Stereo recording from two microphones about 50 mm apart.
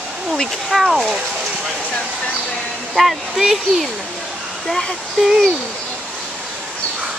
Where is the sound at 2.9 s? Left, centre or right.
Centre.